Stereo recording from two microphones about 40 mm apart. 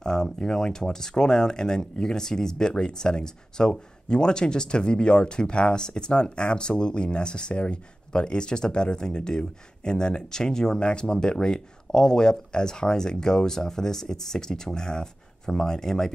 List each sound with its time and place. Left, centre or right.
0.0 s speech: centre